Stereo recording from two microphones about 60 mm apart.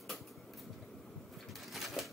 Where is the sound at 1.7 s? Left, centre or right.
Centre.